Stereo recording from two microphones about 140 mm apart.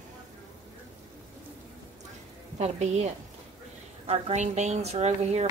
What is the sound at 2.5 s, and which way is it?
Speech, 50° right (ahead or behind).